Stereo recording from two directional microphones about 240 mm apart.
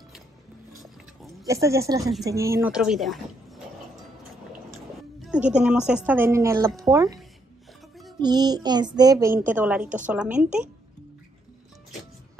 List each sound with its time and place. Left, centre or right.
1.4 s child singing: centre
2.2 s a woman's voice: centre
5.2 s a woman's voice: centre
6.8 s child singing: centre
8.2 s child singing: centre
9.5 s a woman's voice: centre